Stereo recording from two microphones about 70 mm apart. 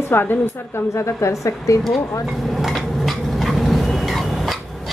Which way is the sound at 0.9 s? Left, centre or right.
Left.